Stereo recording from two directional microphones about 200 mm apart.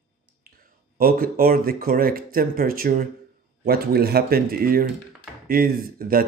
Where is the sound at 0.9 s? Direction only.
45° right (ahead or behind).